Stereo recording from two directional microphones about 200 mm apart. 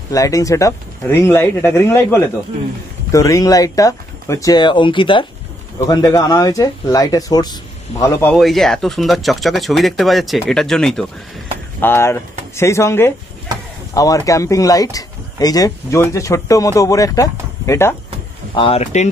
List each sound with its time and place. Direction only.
0.1 s speech: 15° left (ahead or behind)
8.4 s speech: centre (ahead or behind)
18.5 s speech: 25° left (ahead or behind)